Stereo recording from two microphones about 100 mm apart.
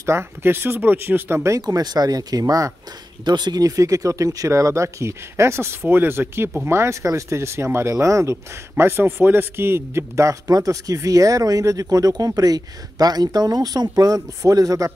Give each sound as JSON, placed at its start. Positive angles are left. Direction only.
{"t": 0.0, "sound": "speech", "side_deg": -25}